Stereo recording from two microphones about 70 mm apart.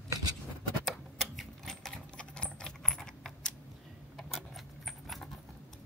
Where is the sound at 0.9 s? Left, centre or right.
Centre.